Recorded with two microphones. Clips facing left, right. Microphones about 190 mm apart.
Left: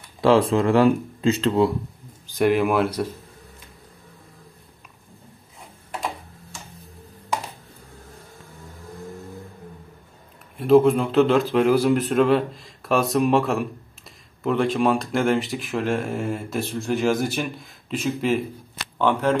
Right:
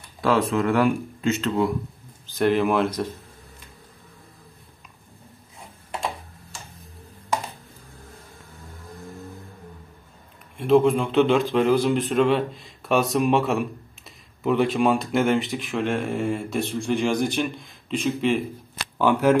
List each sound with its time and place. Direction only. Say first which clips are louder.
0.2 s speech: left 4 dB; 30° left (ahead or behind)
2.2 s speech: left 1 dB; 10° left (ahead or behind)
10.6 s speech: left 2 dB; centre (ahead or behind)
18.9 s speech: right 2 dB; 10° right (ahead or behind)